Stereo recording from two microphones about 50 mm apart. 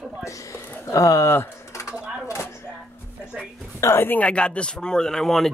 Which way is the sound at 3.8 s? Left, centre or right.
Left.